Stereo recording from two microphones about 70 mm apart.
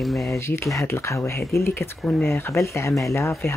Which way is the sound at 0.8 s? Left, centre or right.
Left.